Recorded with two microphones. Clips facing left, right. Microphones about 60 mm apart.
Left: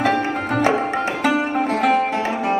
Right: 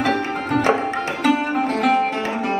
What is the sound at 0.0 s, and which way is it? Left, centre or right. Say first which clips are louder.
Music: left 2 dB; centre.